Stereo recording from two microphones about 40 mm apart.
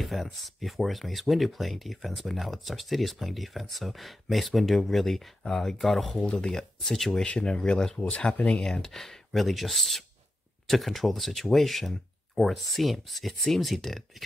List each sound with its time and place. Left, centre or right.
0.0 s speech: centre
6.1 s speech: left
6.5 s speech: centre
7.2 s speech: centre
8.9 s speech: centre